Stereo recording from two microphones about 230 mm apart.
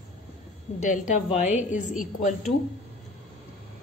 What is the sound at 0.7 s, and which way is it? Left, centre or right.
A woman's voice, left.